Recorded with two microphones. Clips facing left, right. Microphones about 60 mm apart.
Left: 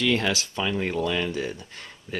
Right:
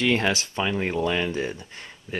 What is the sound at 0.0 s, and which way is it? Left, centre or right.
Speech, right.